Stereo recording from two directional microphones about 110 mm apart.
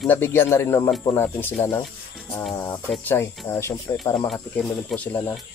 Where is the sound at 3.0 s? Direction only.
20° left (ahead or behind).